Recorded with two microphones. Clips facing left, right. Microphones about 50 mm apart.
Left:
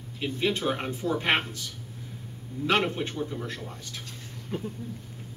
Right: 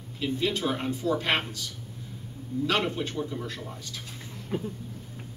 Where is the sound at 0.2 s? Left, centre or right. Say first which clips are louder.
Even; left.